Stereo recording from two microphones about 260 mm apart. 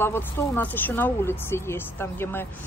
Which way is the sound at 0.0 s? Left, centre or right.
Centre.